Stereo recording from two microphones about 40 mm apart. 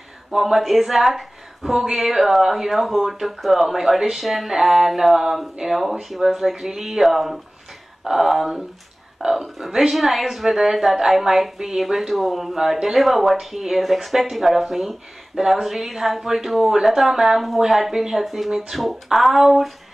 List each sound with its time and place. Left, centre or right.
0.3 s speech: centre